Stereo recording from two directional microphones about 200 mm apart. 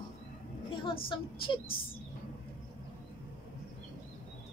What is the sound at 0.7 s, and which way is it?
Speech, 25° left (ahead or behind).